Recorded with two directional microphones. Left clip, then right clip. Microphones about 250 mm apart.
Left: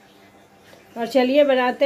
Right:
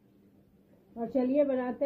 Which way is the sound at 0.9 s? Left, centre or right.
Left.